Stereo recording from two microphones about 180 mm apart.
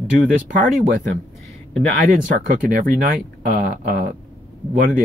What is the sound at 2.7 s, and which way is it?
Speech, 50° right (ahead or behind).